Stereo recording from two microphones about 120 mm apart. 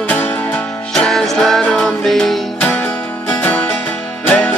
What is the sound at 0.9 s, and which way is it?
Music, 5° left (ahead or behind).